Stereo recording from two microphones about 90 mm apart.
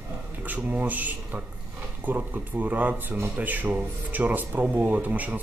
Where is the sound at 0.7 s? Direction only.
20° right (ahead or behind).